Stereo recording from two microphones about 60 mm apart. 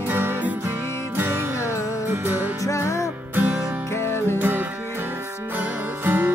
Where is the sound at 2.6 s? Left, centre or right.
Left.